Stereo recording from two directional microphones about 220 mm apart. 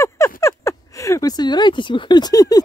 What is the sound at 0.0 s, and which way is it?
Speech, 15° left (ahead or behind).